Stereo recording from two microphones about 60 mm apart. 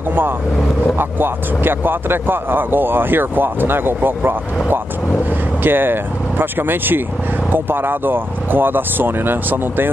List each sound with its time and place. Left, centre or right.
0.9 s speech: right
5.6 s speech: right